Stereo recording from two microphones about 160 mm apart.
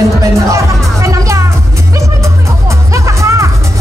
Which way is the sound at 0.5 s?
20° right (ahead or behind).